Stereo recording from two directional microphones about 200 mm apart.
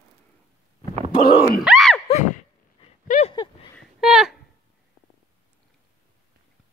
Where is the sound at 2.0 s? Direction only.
35° left (ahead or behind).